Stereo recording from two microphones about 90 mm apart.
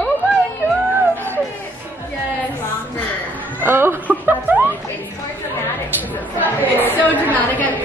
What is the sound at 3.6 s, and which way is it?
Snicker, 25° right (ahead or behind).